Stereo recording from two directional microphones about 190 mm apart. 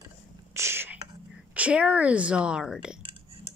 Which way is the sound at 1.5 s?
5° right (ahead or behind).